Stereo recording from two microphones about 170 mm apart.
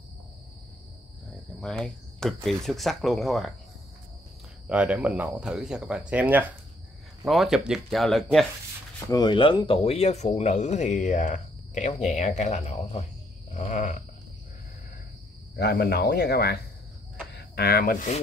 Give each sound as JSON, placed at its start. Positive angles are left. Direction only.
{"t": 1.6, "sound": "speech", "side_deg": 5}
{"t": 4.6, "sound": "speech", "side_deg": -10}
{"t": 9.1, "sound": "speech", "side_deg": 25}
{"t": 9.8, "sound": "speech", "side_deg": 40}
{"t": 15.5, "sound": "speech", "side_deg": 70}